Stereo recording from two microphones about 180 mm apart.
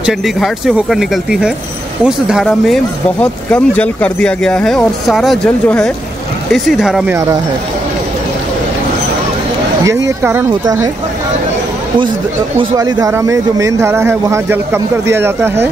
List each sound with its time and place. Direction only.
0.0 s speech: centre (ahead or behind)
10.0 s speech: 15° right (ahead or behind)
12.7 s speech: 20° right (ahead or behind)